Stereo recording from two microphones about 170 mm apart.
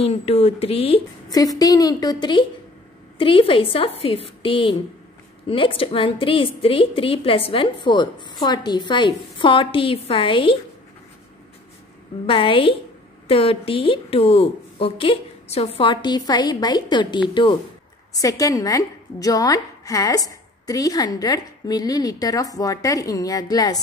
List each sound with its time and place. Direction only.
0.0 s a woman's voice: 35° left (ahead or behind)
1.3 s a woman's voice: 20° left (ahead or behind)
12.3 s a woman's voice: 30° left (ahead or behind)